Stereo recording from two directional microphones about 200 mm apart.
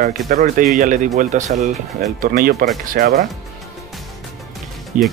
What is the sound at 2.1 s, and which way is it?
Speech, 45° right (ahead or behind).